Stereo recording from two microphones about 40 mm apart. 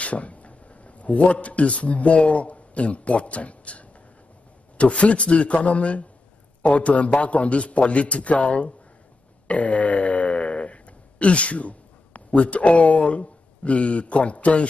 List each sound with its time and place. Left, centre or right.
0.0 s a man's voice: left